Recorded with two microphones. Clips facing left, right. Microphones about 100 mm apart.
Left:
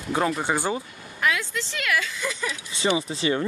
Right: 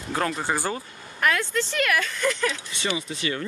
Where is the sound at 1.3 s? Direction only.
5° left (ahead or behind).